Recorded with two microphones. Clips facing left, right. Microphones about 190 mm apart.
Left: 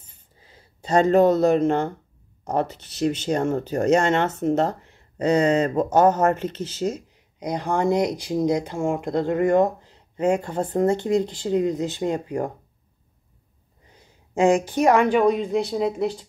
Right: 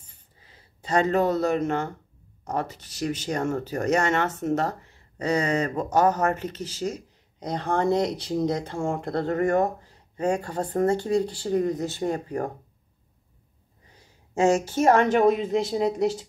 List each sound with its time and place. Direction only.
0.4 s speech: 30° left (ahead or behind)
14.6 s a woman's voice: 15° left (ahead or behind)
15.2 s speech: 5° right (ahead or behind)